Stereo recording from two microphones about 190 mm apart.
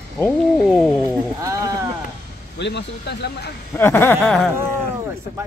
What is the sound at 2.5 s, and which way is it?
Speech, 65° left (ahead or behind).